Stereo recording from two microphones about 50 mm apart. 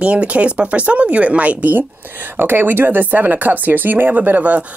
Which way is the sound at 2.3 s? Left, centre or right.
Right.